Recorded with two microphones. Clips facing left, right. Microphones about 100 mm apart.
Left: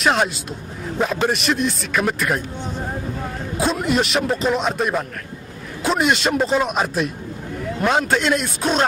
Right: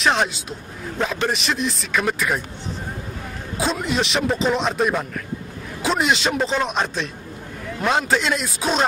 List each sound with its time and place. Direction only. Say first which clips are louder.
0.0 s speech: left 1 dB; centre (ahead or behind)
3.5 s speech: left 3 dB; centre (ahead or behind)